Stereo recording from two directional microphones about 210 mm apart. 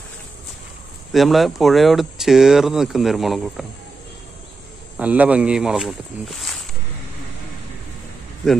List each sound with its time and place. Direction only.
1.1 s speech: centre (ahead or behind)
4.9 s speech: 5° right (ahead or behind)